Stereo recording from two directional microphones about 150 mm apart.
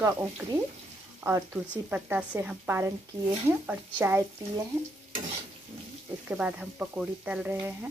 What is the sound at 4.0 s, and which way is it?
Speech, 15° right (ahead or behind).